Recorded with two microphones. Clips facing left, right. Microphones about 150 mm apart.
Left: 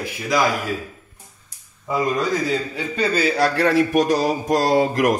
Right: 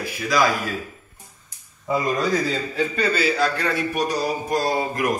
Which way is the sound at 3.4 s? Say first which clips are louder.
Left 5 dB; 85° left.